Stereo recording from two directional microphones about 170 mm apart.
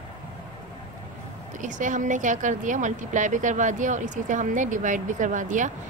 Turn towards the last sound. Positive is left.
turn(degrees=-50)  # may be behind; listen again after turning